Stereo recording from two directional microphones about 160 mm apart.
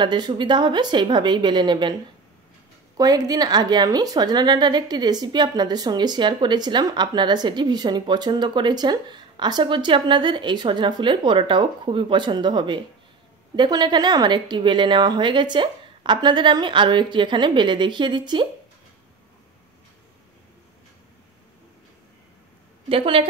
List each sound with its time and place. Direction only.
0.0 s a woman's voice: 30° right (ahead or behind)
3.0 s a woman's voice: 25° right (ahead or behind)
22.8 s a woman's voice: 35° right (ahead or behind)